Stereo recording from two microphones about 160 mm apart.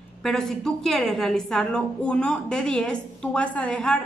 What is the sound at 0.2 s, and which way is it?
A woman's voice, 5° left (ahead or behind).